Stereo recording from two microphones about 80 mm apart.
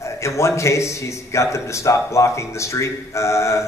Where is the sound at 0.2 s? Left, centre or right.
Left.